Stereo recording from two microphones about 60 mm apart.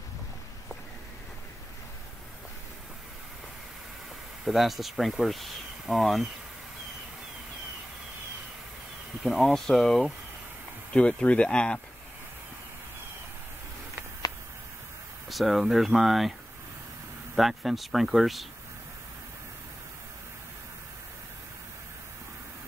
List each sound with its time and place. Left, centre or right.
4.5 s speech: centre
9.2 s speech: centre
10.9 s speech: centre
15.2 s speech: centre
17.4 s speech: centre